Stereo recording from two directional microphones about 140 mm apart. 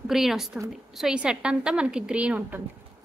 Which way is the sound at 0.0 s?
5° right (ahead or behind).